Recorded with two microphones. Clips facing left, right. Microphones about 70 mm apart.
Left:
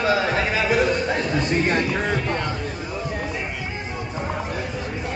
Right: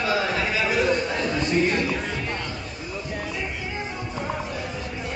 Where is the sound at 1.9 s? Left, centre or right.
Left.